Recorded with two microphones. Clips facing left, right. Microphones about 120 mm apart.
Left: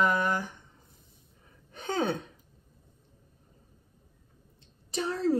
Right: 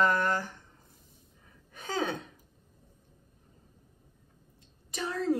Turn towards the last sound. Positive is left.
turn(degrees=30)  # may be behind; listen again after turning